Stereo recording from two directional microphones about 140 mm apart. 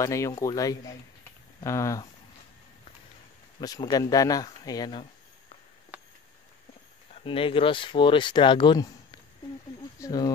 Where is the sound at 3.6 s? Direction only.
25° left (ahead or behind).